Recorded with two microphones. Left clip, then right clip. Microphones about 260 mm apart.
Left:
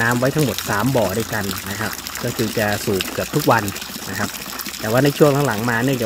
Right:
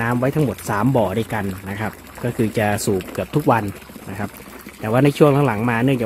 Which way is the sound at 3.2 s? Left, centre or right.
Centre.